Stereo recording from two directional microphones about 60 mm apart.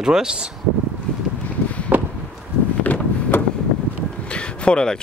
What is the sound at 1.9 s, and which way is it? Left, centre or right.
Chop, right.